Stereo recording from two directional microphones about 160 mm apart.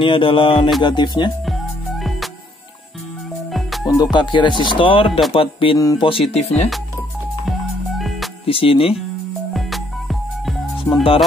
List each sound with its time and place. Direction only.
0.0 s music: 30° left (ahead or behind)
0.8 s speech: 30° left (ahead or behind)
1.4 s music: centre (ahead or behind)
3.8 s speech: 25° left (ahead or behind)
5.3 s music: 35° left (ahead or behind)
5.8 s speech: 20° left (ahead or behind)
6.0 s music: 35° left (ahead or behind)
8.5 s music: 35° left (ahead or behind)
9.5 s music: centre (ahead or behind)